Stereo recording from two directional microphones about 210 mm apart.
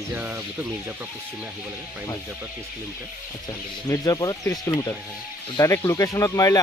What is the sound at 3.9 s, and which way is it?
Speech, 15° left (ahead or behind).